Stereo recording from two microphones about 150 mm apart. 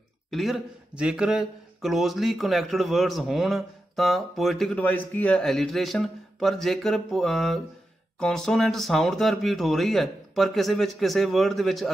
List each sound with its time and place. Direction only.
0.3 s speech: centre (ahead or behind)